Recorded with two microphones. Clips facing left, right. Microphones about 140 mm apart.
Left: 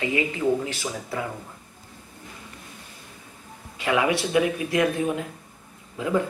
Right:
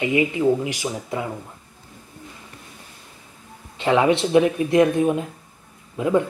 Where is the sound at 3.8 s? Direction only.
25° right (ahead or behind).